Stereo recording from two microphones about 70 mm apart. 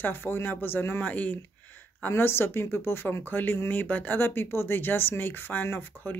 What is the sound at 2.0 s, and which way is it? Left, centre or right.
A woman's voice, left.